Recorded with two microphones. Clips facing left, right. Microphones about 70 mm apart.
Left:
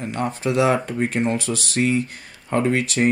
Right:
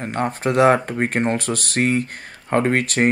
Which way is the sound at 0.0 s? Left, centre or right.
Right.